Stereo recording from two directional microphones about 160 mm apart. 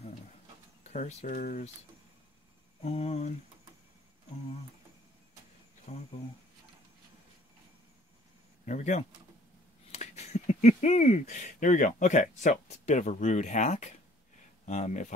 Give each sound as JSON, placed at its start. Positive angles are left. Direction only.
{"t": 0.8, "sound": "speech", "side_deg": 45}
{"t": 2.8, "sound": "speech", "side_deg": 40}
{"t": 5.9, "sound": "speech", "side_deg": 40}
{"t": 8.6, "sound": "speech", "side_deg": 45}